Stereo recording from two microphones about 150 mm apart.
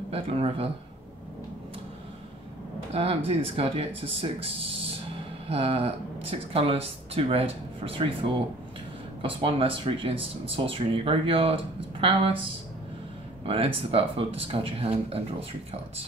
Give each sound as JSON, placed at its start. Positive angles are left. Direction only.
{"t": 0.1, "sound": "speech", "side_deg": -40}
{"t": 2.9, "sound": "speech", "side_deg": -40}
{"t": 5.5, "sound": "speech", "side_deg": -40}
{"t": 13.5, "sound": "speech", "side_deg": -40}